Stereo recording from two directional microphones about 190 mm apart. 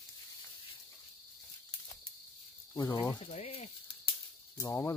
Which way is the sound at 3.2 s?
35° left (ahead or behind).